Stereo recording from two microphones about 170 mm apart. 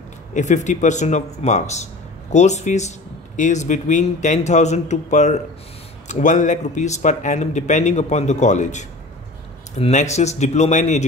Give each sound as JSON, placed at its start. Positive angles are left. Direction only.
{"t": 0.3, "sound": "speech", "side_deg": 45}